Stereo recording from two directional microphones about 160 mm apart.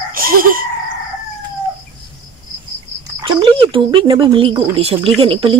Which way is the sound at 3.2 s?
30° right (ahead or behind).